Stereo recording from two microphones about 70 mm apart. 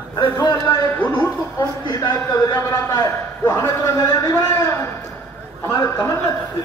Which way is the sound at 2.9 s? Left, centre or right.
Left.